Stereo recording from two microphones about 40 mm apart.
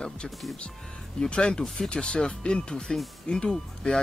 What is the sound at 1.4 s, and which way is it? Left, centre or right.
Speech, centre.